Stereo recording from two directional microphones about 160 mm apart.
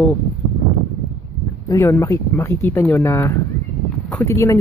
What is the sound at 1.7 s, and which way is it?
A man's voice, 15° left (ahead or behind).